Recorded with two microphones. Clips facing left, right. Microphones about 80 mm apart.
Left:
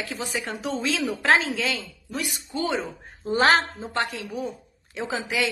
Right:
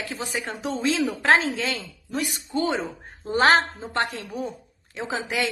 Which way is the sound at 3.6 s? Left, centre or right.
Centre.